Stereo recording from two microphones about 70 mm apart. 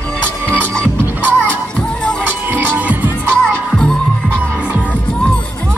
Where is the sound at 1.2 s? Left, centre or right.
Right.